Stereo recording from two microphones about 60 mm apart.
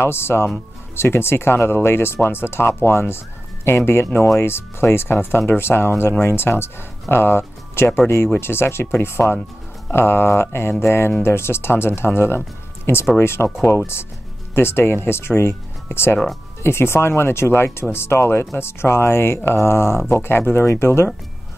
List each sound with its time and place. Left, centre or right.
0.0 s speech: left